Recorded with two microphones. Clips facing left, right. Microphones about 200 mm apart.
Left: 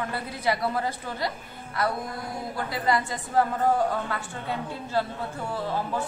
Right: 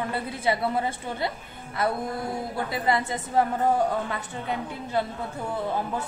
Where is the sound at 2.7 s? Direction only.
20° right (ahead or behind).